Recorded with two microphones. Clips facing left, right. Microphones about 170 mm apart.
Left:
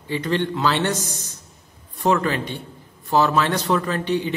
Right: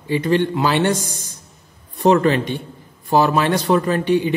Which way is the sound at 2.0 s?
20° right (ahead or behind).